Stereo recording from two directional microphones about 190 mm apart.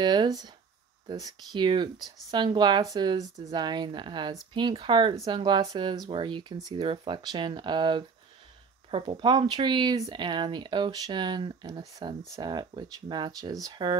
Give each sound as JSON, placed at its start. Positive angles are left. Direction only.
{"t": 0.0, "sound": "speech", "side_deg": -20}